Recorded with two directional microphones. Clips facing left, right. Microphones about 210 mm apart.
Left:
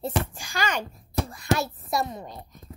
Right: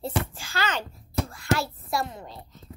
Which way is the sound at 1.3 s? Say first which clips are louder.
Left 1 dB; 20° left (ahead or behind).